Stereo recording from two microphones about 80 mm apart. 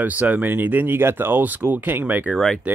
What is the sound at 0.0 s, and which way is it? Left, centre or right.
Speech, centre.